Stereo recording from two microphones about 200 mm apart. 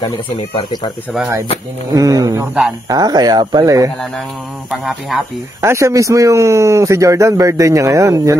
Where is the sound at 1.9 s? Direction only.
20° right (ahead or behind).